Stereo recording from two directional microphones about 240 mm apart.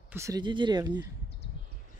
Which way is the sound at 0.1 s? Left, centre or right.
Centre.